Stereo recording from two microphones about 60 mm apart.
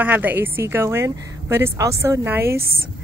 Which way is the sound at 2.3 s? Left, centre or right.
Right.